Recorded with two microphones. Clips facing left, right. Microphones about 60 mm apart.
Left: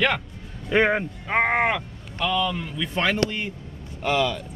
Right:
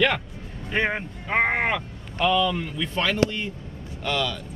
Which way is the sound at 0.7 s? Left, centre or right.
Left.